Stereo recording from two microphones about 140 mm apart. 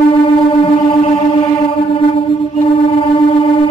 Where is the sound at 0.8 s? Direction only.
40° left (ahead or behind).